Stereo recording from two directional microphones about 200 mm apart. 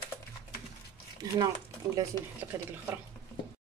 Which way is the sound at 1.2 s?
15° right (ahead or behind).